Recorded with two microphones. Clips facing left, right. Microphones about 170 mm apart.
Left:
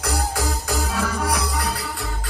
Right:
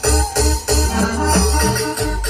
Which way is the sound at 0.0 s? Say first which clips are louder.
Right 7 dB; 80° right.